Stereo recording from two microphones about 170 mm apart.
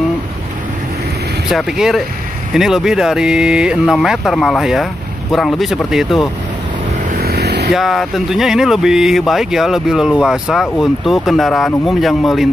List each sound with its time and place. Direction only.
1.5 s speech: centre (ahead or behind)
7.2 s vehicle: 65° right (ahead or behind)
7.7 s speech: centre (ahead or behind)